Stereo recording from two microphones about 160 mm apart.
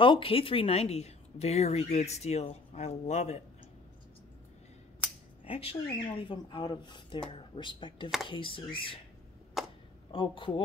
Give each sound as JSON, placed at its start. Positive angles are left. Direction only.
{"t": 0.0, "sound": "speech", "side_deg": 35}
{"t": 5.4, "sound": "speech", "side_deg": 35}
{"t": 9.6, "sound": "a sound", "side_deg": 0}
{"t": 10.1, "sound": "speech", "side_deg": 30}